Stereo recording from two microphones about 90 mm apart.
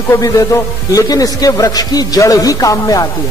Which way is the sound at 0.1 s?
40° left (ahead or behind).